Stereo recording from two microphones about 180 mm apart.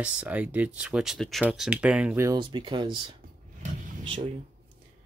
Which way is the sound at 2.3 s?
25° right (ahead or behind).